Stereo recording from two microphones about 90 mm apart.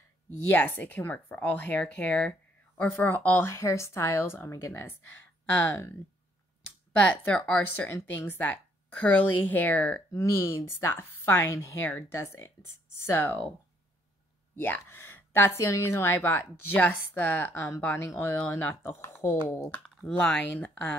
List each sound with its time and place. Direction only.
0.5 s a woman's voice: 20° left (ahead or behind)
7.0 s speech: 15° left (ahead or behind)
7.7 s a woman's voice: 25° left (ahead or behind)
10.1 s a woman's voice: 30° left (ahead or behind)